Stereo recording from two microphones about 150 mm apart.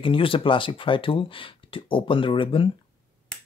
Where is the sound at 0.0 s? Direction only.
35° left (ahead or behind).